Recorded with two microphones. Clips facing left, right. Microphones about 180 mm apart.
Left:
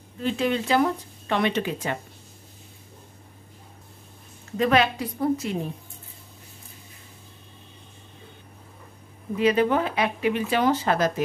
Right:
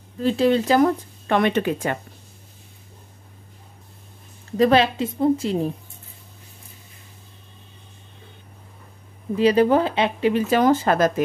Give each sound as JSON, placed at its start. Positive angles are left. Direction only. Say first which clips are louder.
{"t": 0.2, "sound": "speech", "louder": "right 6 dB", "side_deg": -35}
{"t": 4.6, "sound": "a woman's voice", "louder": "right 4 dB", "side_deg": -30}
{"t": 9.4, "sound": "speech", "louder": "right 4 dB", "side_deg": -35}